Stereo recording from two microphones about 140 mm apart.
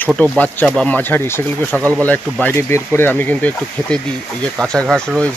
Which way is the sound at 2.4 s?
15° left (ahead or behind).